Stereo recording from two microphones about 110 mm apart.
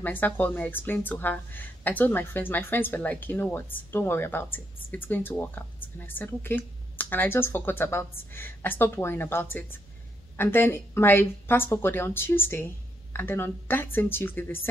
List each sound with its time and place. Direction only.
0.0 s a woman's voice: 15° left (ahead or behind)